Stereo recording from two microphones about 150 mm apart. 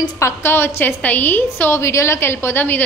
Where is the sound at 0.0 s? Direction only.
15° left (ahead or behind).